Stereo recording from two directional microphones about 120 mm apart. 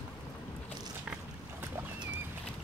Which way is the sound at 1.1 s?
10° right (ahead or behind).